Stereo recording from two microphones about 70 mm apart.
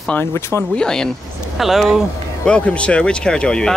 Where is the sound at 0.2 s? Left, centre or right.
Left.